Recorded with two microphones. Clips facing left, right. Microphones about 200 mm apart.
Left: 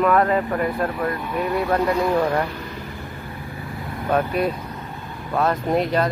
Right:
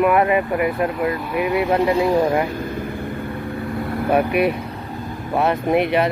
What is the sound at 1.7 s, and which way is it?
Speech, 20° right (ahead or behind).